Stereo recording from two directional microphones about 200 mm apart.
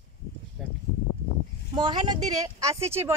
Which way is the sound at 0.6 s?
Centre (ahead or behind).